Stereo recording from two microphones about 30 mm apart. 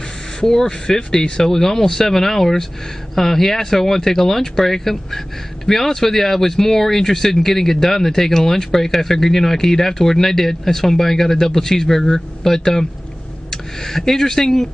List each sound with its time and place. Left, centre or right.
0.4 s speech: centre